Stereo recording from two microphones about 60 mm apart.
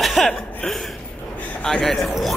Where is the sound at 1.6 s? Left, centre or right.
Centre.